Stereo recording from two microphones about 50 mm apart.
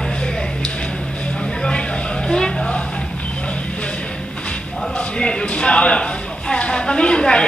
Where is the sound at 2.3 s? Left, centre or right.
Centre.